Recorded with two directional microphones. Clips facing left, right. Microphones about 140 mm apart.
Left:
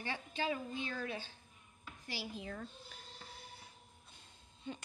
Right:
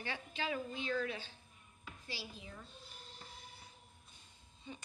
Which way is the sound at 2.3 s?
70° left (ahead or behind).